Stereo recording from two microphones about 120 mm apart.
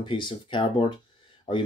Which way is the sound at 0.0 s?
45° left (ahead or behind).